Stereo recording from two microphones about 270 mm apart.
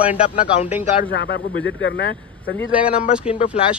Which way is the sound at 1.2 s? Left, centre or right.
Left.